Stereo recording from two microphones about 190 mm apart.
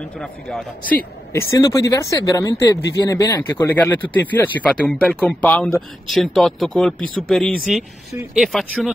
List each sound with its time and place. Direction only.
0.2 s speech: centre (ahead or behind)
1.3 s speech: 15° left (ahead or behind); by 8.9 s centre (ahead or behind)